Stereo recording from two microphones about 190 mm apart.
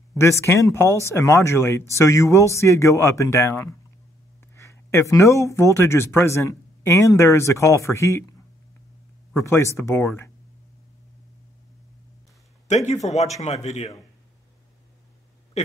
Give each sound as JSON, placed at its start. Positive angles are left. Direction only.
{"t": 0.2, "sound": "speech", "side_deg": 15}
{"t": 9.3, "sound": "speech", "side_deg": 15}
{"t": 12.6, "sound": "speech", "side_deg": 35}